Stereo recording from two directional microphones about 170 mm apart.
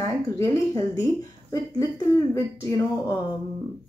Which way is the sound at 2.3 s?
20° left (ahead or behind).